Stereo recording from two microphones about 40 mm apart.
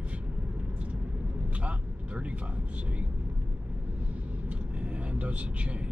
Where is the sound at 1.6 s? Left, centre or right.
Right.